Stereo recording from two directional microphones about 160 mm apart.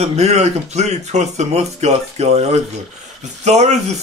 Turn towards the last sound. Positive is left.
turn(degrees=-45)  # may be behind; listen again after turning